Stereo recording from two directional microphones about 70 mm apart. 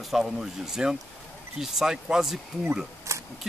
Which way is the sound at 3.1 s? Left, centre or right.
Right.